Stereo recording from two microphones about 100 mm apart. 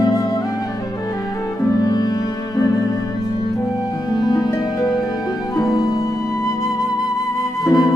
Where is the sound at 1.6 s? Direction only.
40° left (ahead or behind).